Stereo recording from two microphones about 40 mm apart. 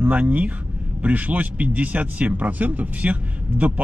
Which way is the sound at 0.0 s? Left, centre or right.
Right.